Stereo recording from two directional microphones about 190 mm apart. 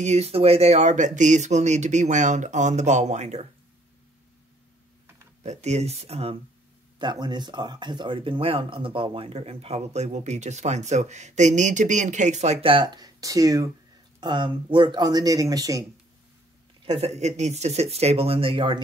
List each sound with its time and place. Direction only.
0.0 s speech: 35° right (ahead or behind)
5.4 s speech: 35° right (ahead or behind); by 15.8 s 20° right (ahead or behind)
16.8 s speech: 30° right (ahead or behind)